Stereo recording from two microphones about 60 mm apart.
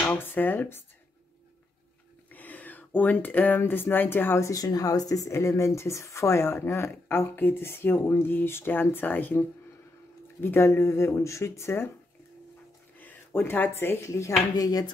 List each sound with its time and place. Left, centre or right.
0.2 s speech: left
2.3 s speech: left
4.4 s speech: left
5.3 s speech: left
10.4 s speech: left
13.0 s speech: left
14.0 s speech: left
14.6 s speech: left